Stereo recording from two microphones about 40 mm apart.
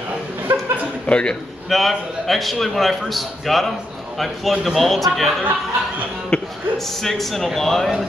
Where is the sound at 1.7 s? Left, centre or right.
Centre.